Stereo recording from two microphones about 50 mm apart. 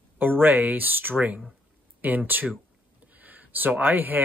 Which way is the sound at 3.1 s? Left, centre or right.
Right.